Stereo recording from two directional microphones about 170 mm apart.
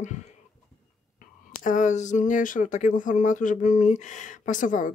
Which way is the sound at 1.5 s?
50° left (ahead or behind).